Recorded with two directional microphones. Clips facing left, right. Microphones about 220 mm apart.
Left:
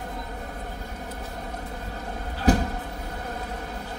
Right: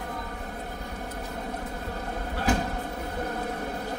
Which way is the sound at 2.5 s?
35° left (ahead or behind).